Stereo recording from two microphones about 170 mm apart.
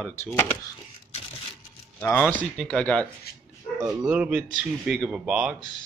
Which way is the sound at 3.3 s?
65° left (ahead or behind).